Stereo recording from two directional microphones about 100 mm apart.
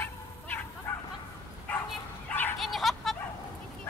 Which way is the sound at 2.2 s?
20° left (ahead or behind).